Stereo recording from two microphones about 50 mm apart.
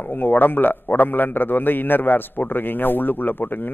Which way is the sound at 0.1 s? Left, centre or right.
Left.